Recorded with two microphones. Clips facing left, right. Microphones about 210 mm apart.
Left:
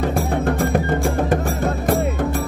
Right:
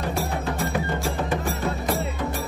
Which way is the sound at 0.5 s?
55° left (ahead or behind).